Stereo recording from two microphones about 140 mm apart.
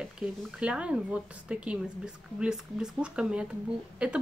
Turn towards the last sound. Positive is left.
turn(degrees=-10)  # may be behind; listen again after turning